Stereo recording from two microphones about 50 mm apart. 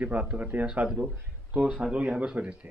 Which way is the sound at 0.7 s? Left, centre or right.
Right.